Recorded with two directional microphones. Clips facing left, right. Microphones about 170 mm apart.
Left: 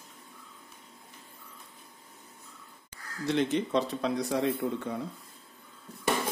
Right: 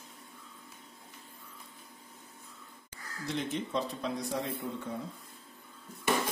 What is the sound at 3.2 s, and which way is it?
Speech, 75° left (ahead or behind).